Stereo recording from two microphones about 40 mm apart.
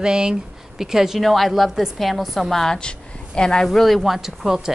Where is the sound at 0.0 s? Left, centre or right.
Right.